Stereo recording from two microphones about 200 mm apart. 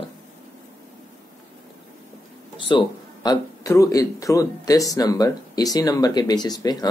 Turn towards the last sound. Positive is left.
turn(degrees=20)  # may be behind; listen again after turning